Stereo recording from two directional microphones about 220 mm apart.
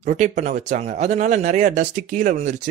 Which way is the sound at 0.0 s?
30° right (ahead or behind).